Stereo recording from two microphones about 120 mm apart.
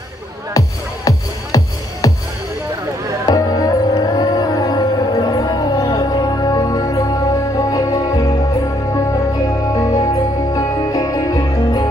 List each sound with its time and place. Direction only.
0.6 s music: 30° left (ahead or behind)
3.3 s music: 30° left (ahead or behind)
9.8 s music: 25° left (ahead or behind)